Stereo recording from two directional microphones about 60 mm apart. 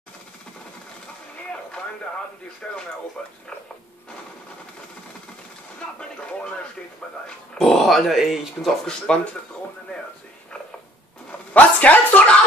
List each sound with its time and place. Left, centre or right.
2.6 s speech: centre
5.8 s speech: centre
9.0 s speech: centre
11.5 s a woman's voice: left